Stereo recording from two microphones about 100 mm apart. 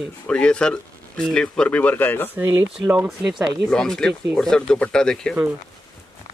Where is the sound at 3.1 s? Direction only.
5° right (ahead or behind).